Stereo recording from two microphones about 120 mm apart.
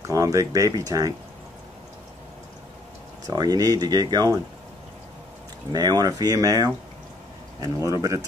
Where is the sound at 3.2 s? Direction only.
35° right (ahead or behind).